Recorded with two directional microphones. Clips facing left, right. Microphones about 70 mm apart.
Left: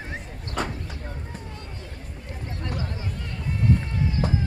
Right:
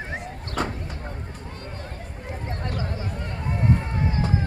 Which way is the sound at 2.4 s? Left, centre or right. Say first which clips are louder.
Right 1 dB; right.